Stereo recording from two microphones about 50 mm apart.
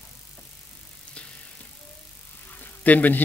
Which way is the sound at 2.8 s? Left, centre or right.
Left.